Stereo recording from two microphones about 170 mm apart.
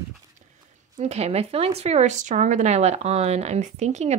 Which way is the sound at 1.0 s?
40° right (ahead or behind).